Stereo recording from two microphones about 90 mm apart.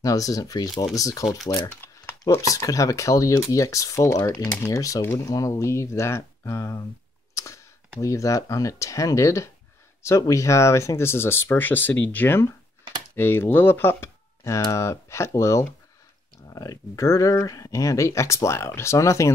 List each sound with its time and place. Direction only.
0.0 s speech: 40° left (ahead or behind)
1.5 s crumpling: 25° left (ahead or behind)
2.4 s speech: 40° left (ahead or behind)
7.3 s computer keyboard: 35° left (ahead or behind)
8.0 s speech: 35° left (ahead or behind)